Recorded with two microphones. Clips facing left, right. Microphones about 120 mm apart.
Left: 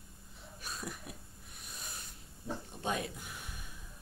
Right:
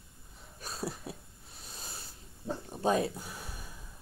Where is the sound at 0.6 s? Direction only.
30° right (ahead or behind).